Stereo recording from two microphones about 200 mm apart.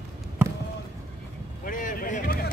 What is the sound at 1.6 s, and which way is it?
Vehicle, 45° left (ahead or behind).